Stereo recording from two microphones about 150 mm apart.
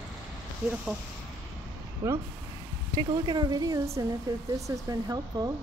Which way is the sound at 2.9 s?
25° right (ahead or behind).